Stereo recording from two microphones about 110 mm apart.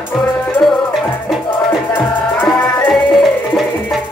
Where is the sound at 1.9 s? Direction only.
20° left (ahead or behind).